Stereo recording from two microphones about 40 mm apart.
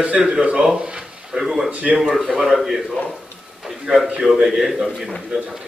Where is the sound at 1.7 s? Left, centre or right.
Right.